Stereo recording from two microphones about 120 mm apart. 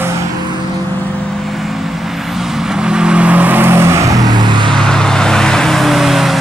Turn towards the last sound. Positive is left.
turn(degrees=0)  # may be behind; listen again after turning